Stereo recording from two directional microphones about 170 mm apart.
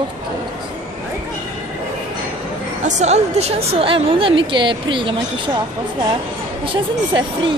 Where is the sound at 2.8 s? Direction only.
45° right (ahead or behind).